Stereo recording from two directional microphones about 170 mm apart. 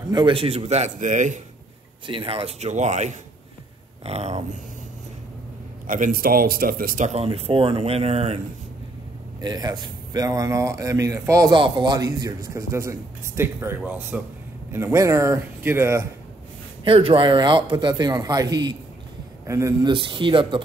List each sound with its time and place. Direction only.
0.1 s a man's voice: 30° right (ahead or behind); by 1.4 s 45° right (ahead or behind)
2.0 s a man's voice: 30° right (ahead or behind)
5.9 s a man's voice: 50° right (ahead or behind)
9.4 s speech: 25° right (ahead or behind)
16.8 s speech: 35° right (ahead or behind); by 19.9 s 15° right (ahead or behind)
19.9 s speech: 30° right (ahead or behind)